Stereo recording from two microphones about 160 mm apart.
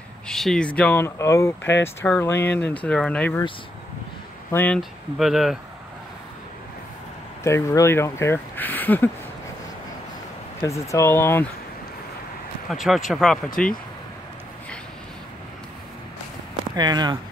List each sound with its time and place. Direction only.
0.3 s speech: 5° left (ahead or behind)
4.5 s speech: 15° left (ahead or behind)
4.7 s speech: centre (ahead or behind)
7.4 s speech: 15° left (ahead or behind)
10.6 s speech: 20° left (ahead or behind)
12.6 s speech: centre (ahead or behind)
16.7 s speech: 25° right (ahead or behind)